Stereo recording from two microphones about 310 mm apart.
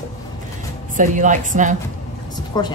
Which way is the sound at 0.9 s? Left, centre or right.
Right.